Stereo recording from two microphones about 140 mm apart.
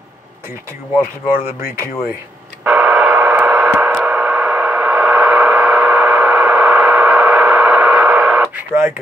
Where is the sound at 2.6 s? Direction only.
5° right (ahead or behind).